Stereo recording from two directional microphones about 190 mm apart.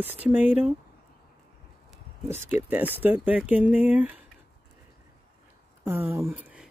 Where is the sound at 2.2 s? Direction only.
10° right (ahead or behind).